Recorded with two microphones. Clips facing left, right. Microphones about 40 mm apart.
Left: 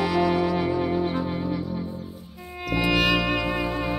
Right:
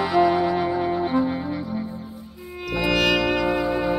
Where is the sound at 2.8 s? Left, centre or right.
Centre.